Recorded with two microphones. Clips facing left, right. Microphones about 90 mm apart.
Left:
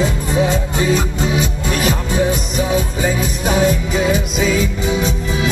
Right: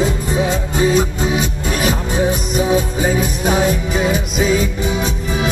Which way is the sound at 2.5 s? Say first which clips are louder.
Right 5 dB; 40° right (ahead or behind).